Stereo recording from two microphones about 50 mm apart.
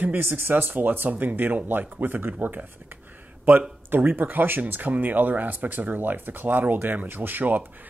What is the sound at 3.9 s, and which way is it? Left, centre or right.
Speech, right.